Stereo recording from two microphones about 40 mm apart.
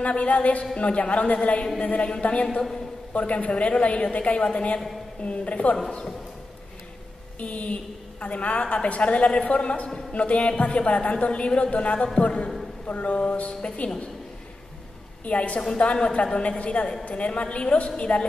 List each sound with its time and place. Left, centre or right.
0.0 s a woman's voice: left
7.3 s a woman's voice: left
15.2 s a woman's voice: left